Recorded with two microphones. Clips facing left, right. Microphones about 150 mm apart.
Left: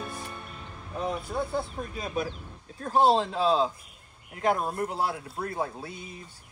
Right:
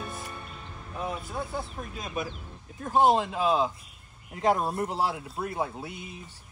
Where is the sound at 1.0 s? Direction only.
Centre (ahead or behind).